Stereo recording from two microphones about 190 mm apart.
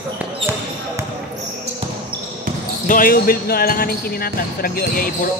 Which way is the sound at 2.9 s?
50° left (ahead or behind).